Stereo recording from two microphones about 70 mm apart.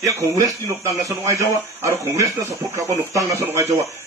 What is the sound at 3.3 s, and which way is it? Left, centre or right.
Speech, right.